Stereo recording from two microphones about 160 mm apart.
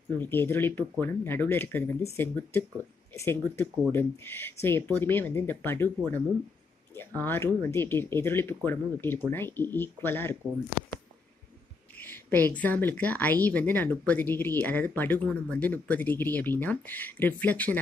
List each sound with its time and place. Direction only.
0.2 s a woman's voice: 15° left (ahead or behind)
12.0 s a woman's voice: 10° left (ahead or behind)